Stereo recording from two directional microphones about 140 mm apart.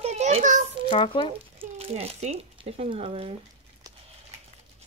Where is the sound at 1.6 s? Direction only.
45° right (ahead or behind).